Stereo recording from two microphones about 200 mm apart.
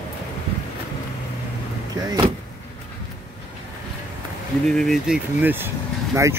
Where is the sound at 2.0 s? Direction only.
20° right (ahead or behind).